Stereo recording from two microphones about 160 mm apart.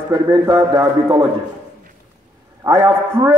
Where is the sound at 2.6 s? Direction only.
15° right (ahead or behind).